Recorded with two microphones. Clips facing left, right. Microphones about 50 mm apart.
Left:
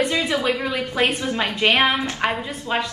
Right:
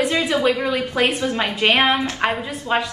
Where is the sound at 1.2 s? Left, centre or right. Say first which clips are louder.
Right 2 dB; right.